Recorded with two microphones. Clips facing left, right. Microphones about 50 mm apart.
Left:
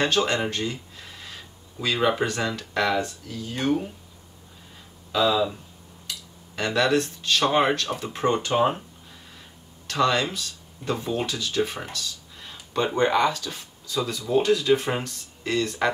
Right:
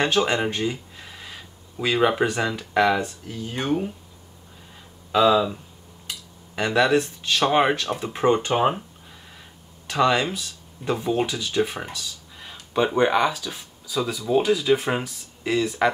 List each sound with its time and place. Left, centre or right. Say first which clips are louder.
0.0 s speech: right 2 dB; centre
5.1 s speech: right 4 dB; right
6.5 s speech: right 3 dB; centre
9.8 s speech: right 2 dB; centre